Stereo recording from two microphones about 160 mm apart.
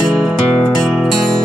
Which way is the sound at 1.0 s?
Centre (ahead or behind).